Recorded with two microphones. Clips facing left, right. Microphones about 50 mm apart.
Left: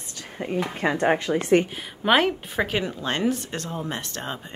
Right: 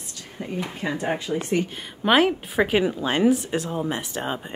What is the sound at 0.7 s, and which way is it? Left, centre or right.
Speech, left.